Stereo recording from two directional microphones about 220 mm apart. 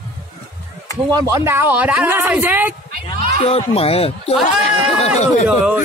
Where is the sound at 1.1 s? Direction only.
15° right (ahead or behind).